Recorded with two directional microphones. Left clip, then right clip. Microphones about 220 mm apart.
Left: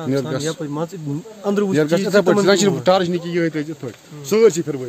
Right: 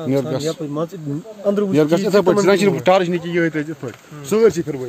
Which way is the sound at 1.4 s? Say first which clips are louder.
Right 2 dB; 20° left (ahead or behind).